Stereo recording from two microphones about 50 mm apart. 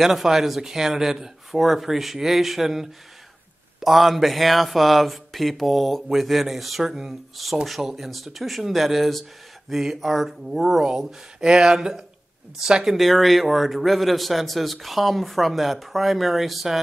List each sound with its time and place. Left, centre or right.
0.0 s a man's voice: centre
12.9 s a man's voice: centre